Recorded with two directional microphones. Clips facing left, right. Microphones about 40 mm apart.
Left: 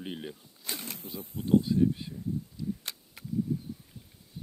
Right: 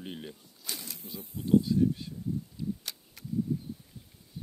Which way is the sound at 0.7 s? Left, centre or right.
Left.